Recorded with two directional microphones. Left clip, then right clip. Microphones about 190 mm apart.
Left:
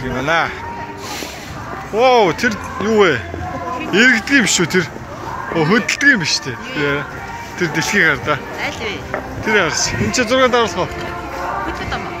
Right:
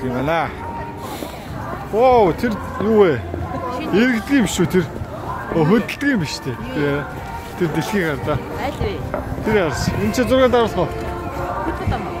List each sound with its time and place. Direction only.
0.2 s speech: 5° right (ahead or behind)
2.0 s speech: 5° right (ahead or behind)
8.5 s speech: 25° right (ahead or behind)
9.5 s speech: 10° right (ahead or behind)